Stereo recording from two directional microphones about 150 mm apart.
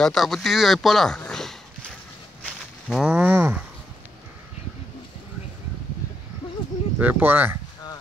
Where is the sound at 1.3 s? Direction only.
Centre (ahead or behind).